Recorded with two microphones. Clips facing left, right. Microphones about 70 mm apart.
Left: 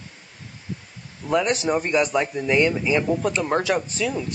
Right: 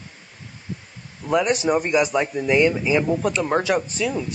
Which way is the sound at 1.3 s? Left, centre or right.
Centre.